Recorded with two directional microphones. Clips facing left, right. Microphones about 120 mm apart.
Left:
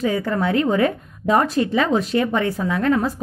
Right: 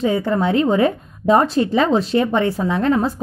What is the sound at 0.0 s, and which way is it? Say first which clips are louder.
A woman's voice: right 3 dB; 25° right (ahead or behind).